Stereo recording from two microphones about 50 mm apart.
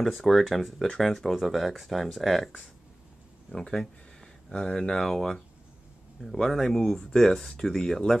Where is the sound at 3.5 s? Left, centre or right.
Centre.